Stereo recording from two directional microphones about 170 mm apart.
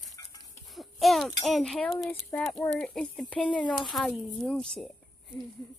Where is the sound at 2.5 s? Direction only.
15° left (ahead or behind).